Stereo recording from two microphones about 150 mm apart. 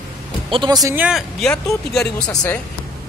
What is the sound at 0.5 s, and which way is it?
Speech, 30° right (ahead or behind).